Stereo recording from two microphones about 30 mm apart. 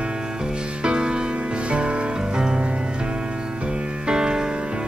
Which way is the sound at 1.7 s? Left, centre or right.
Right.